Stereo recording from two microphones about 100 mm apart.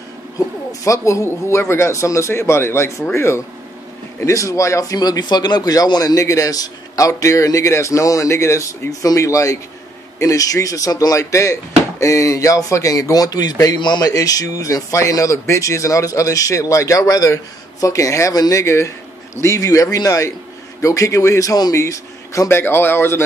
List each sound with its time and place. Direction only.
0.7 s speech: 30° left (ahead or behind)